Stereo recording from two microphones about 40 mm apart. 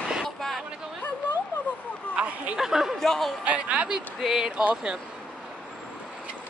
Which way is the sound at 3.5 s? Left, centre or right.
Right.